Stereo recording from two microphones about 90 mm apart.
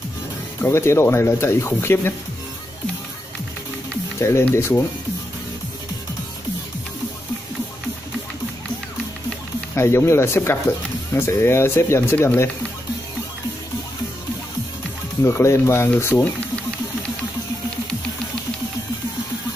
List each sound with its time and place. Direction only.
0.6 s speech: 30° left (ahead or behind)
4.2 s speech: 30° left (ahead or behind)
9.8 s speech: 30° left (ahead or behind)
15.2 s speech: 30° left (ahead or behind)